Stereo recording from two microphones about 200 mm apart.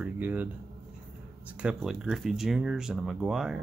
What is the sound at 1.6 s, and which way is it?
Speech, 5° right (ahead or behind).